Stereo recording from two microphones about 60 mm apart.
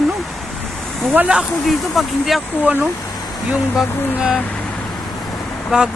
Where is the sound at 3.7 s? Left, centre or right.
Centre.